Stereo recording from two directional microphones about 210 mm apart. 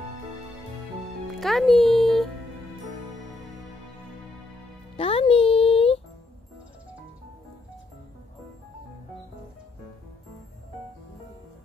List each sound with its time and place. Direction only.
1.4 s a child's voice: centre (ahead or behind)
4.9 s music: 25° left (ahead or behind)